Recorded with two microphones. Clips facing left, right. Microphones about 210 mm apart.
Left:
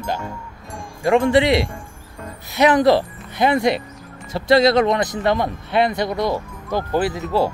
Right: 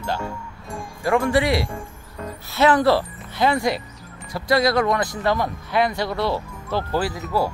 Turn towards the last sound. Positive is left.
turn(degrees=25)  # may be behind; listen again after turning